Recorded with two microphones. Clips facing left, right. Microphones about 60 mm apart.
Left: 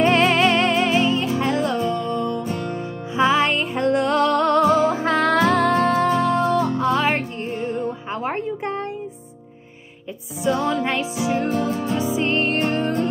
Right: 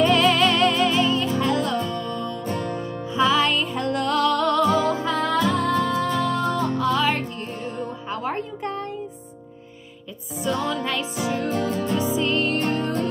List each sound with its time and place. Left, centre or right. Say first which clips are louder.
0.0 s music: left 1 dB; left
4.9 s music: left 4 dB; left
6.0 s music: left 4 dB; left
10.4 s music: left 4 dB; left
12.2 s music: left 2 dB; left